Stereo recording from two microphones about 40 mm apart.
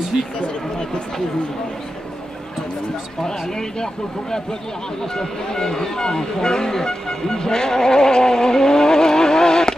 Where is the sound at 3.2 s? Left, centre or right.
Centre.